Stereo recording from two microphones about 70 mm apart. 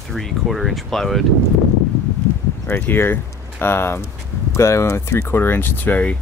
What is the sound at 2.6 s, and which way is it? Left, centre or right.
Speech, left.